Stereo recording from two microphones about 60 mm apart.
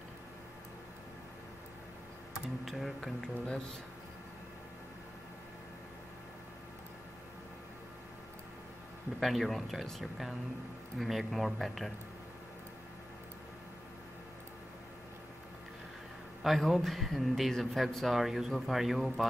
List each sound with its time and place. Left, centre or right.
2.6 s speech: centre
3.2 s speech: centre
9.2 s speech: centre
16.4 s speech: centre